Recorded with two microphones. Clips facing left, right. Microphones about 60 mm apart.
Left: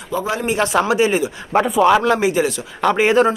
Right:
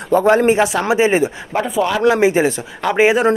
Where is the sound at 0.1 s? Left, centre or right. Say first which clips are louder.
Right 9 dB; right.